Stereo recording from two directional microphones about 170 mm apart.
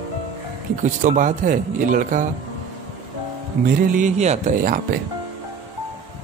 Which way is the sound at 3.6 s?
55° right (ahead or behind).